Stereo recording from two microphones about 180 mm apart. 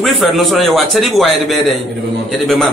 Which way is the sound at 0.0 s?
Centre (ahead or behind).